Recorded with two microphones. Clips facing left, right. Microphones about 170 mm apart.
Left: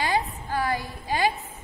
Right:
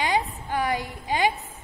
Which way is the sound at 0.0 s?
15° right (ahead or behind).